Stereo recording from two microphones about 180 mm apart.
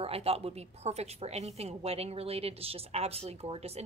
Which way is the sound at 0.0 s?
35° right (ahead or behind).